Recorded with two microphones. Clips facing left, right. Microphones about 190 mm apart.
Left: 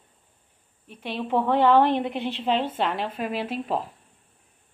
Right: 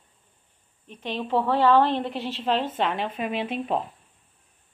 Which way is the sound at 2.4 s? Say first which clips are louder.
Even; 10° left (ahead or behind).